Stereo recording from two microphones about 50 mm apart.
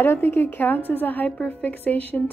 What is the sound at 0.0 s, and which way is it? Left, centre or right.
Speech, left.